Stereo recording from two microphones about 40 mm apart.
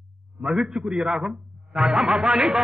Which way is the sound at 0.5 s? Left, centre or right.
Centre.